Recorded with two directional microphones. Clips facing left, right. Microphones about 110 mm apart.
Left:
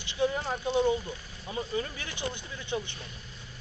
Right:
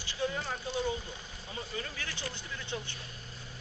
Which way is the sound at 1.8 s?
20° left (ahead or behind).